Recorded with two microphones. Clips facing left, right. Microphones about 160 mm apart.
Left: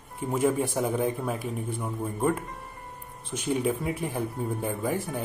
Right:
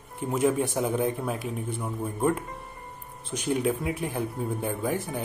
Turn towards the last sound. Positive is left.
turn(degrees=0)  # may be behind; listen again after turning